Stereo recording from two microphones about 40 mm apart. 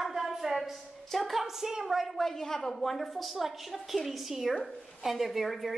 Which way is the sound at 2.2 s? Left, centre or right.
Centre.